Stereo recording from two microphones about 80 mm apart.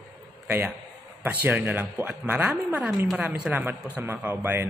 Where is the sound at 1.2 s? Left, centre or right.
Right.